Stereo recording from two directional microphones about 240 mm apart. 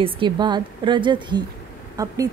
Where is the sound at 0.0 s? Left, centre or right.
Centre.